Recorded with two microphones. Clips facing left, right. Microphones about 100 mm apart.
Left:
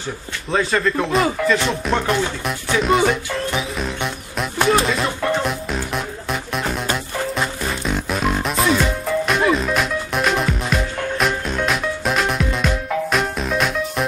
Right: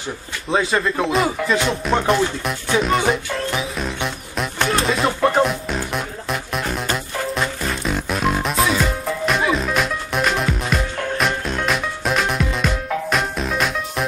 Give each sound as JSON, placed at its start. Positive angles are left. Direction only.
{"t": 0.5, "sound": "music", "side_deg": 0}
{"t": 0.7, "sound": "speech", "side_deg": -15}
{"t": 1.0, "sound": "music", "side_deg": 0}